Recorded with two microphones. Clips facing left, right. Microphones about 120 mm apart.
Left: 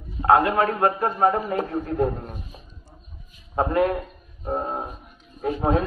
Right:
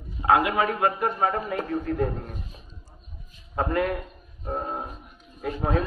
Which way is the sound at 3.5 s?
20° left (ahead or behind).